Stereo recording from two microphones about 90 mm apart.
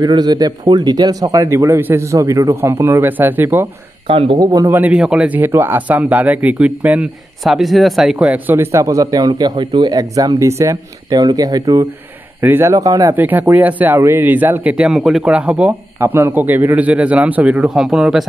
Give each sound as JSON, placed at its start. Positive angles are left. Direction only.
{"t": 0.0, "sound": "speech", "side_deg": -50}
{"t": 2.5, "sound": "speech", "side_deg": -25}
{"t": 4.1, "sound": "speech", "side_deg": -90}
{"t": 4.4, "sound": "speech", "side_deg": -45}
{"t": 4.6, "sound": "speech", "side_deg": -20}
{"t": 4.9, "sound": "a man's voice", "side_deg": -10}
{"t": 7.4, "sound": "speech", "side_deg": 0}
{"t": 8.2, "sound": "speech", "side_deg": -20}
{"t": 8.8, "sound": "speech", "side_deg": -40}
{"t": 12.4, "sound": "speech", "side_deg": -25}
{"t": 12.7, "sound": "speech", "side_deg": -40}
{"t": 13.1, "sound": "speech", "side_deg": -20}
{"t": 14.9, "sound": "a man's voice", "side_deg": -5}
{"t": 16.0, "sound": "a man's voice", "side_deg": -25}